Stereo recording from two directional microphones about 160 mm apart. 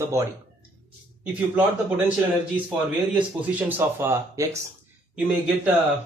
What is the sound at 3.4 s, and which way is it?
A man's voice, 10° right (ahead or behind).